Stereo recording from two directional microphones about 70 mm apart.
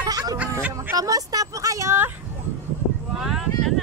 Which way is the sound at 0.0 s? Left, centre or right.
Right.